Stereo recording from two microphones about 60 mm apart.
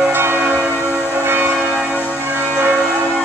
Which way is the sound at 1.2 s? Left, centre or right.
Right.